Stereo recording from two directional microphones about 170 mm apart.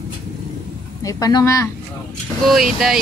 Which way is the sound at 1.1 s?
20° left (ahead or behind).